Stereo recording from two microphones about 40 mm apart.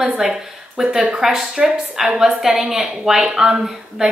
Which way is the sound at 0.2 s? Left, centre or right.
Centre.